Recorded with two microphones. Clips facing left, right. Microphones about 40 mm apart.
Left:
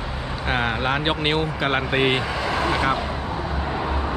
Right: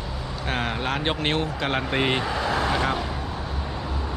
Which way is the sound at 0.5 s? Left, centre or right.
Centre.